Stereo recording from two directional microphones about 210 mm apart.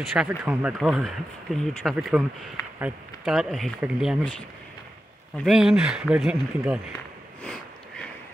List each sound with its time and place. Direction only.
0.1 s speech: 5° right (ahead or behind)
5.4 s speech: centre (ahead or behind)
7.4 s sniff: 5° left (ahead or behind)